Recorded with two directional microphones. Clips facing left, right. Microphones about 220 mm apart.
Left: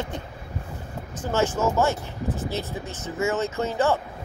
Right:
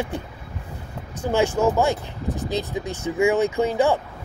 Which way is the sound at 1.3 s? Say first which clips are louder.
Right 3 dB; 15° right (ahead or behind).